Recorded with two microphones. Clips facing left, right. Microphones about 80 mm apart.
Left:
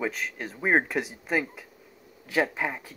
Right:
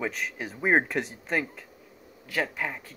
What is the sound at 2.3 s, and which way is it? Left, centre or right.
Speech, centre.